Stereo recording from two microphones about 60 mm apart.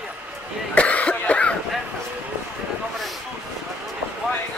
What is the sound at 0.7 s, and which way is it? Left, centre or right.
Cough, left.